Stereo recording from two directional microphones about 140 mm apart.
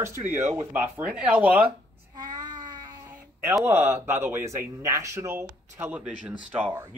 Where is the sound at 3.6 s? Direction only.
15° right (ahead or behind).